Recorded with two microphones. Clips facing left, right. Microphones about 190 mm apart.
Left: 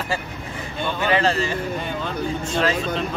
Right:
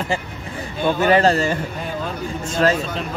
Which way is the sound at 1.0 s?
45° right (ahead or behind).